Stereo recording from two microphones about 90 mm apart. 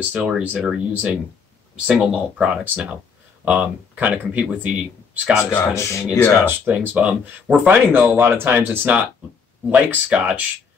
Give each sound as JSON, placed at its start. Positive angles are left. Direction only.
{"t": 0.0, "sound": "speech", "side_deg": -15}
{"t": 5.8, "sound": "speech", "side_deg": 35}
{"t": 6.4, "sound": "speech", "side_deg": -15}